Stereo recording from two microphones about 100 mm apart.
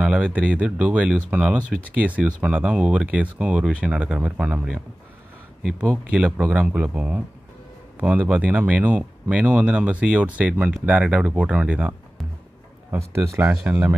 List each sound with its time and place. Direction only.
0.0 s speech: 10° right (ahead or behind)
5.6 s speech: centre (ahead or behind)
12.9 s speech: 25° right (ahead or behind)